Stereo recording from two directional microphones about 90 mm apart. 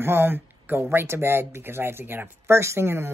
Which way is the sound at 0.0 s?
25° right (ahead or behind).